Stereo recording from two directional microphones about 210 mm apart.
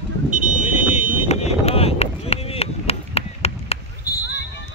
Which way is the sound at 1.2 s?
30° left (ahead or behind).